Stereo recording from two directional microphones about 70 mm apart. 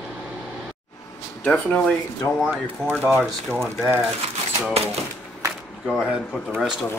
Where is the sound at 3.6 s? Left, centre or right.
Right.